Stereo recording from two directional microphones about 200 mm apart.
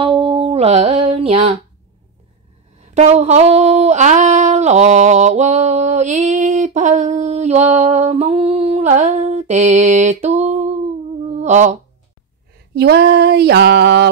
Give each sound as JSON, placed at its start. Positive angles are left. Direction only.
{"t": 0.0, "sound": "music", "side_deg": -30}
{"t": 2.9, "sound": "a sound", "side_deg": -35}
{"t": 12.7, "sound": "female singing", "side_deg": -55}